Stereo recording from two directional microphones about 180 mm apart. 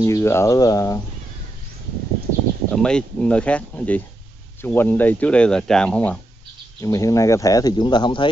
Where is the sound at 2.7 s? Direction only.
5° left (ahead or behind).